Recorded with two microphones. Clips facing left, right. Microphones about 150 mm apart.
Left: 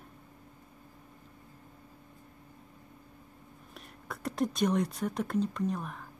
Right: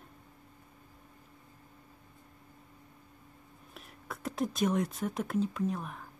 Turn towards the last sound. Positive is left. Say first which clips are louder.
# left 1 dB
turn(degrees=0)  # may be behind; listen again after turning